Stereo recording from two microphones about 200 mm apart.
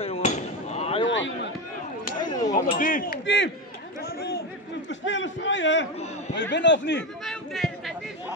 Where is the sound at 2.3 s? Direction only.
20° left (ahead or behind).